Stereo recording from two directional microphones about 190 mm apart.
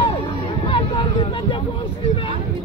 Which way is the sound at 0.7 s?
25° left (ahead or behind).